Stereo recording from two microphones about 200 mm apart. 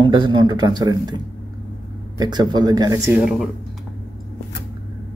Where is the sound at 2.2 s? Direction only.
20° right (ahead or behind).